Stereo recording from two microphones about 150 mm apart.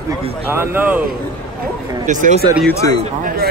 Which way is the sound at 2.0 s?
55° right (ahead or behind).